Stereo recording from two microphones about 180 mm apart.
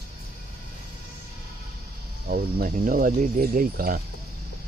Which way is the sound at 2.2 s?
55° right (ahead or behind).